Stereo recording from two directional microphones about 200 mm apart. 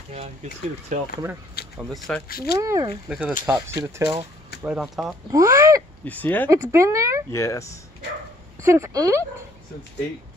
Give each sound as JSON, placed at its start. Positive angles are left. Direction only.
{"t": 0.1, "sound": "speech", "side_deg": -35}
{"t": 1.8, "sound": "speech", "side_deg": 0}
{"t": 2.2, "sound": "speech", "side_deg": 50}
{"t": 2.6, "sound": "speech", "side_deg": -15}
{"t": 3.1, "sound": "speech", "side_deg": -5}
{"t": 3.4, "sound": "speech", "side_deg": -15}
{"t": 4.6, "sound": "speech", "side_deg": 0}
{"t": 5.3, "sound": "speech", "side_deg": -15}
{"t": 6.0, "sound": "speech", "side_deg": 10}
{"t": 6.5, "sound": "speech", "side_deg": -15}
{"t": 7.3, "sound": "speech", "side_deg": 15}
{"t": 8.6, "sound": "speech", "side_deg": -15}